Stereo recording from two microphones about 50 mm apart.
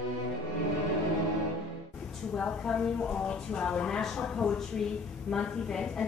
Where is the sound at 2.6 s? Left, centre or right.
Centre.